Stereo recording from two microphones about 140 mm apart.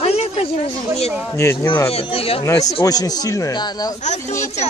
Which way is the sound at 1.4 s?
20° left (ahead or behind).